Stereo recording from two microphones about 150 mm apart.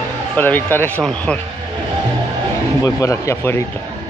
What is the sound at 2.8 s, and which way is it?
Speech, 20° left (ahead or behind).